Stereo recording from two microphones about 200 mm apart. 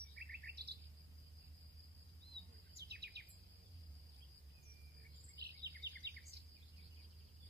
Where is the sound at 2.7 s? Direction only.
55° right (ahead or behind).